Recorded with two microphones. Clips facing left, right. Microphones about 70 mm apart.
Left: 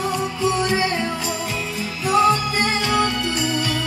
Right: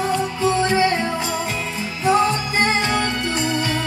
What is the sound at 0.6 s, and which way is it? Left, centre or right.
Music, right.